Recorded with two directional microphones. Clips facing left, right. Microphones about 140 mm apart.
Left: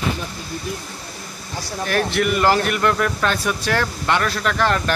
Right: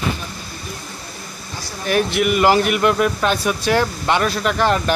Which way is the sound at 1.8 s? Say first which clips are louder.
Right 2 dB; 10° right (ahead or behind).